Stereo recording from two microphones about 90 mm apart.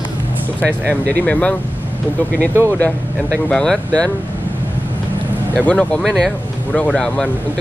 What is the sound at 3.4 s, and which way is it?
Speech, 10° left (ahead or behind).